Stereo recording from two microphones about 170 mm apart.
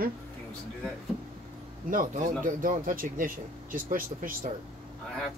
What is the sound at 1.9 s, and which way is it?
Speech, 50° right (ahead or behind).